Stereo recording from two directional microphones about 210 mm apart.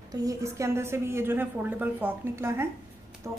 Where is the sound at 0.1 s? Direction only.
15° right (ahead or behind).